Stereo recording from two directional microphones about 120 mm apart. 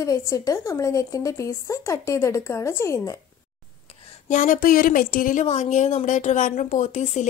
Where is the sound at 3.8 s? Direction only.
90° left.